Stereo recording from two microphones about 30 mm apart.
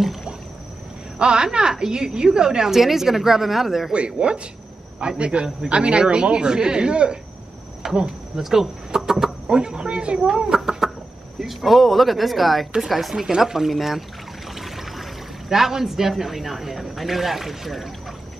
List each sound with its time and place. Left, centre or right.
0.0 s rowboat: centre
1.2 s a woman's voice: right; by 3.9 s centre
3.9 s a man's voice: right
7.8 s insect: right
8.5 s speech: centre
9.5 s speech: right
10.5 s chicken: centre
11.6 s a woman's voice: centre